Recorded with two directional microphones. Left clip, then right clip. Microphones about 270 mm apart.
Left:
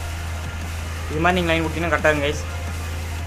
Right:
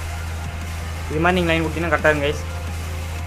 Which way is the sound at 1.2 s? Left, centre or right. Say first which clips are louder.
Right 1 dB; centre.